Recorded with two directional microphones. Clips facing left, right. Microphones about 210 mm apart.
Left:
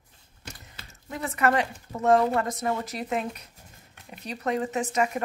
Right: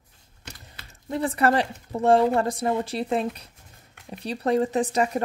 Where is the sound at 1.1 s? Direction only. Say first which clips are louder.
Right 3 dB; 35° right (ahead or behind).